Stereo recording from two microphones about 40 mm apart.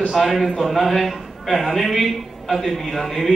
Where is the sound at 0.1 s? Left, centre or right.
Centre.